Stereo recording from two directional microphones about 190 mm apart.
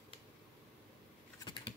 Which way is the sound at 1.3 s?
25° left (ahead or behind).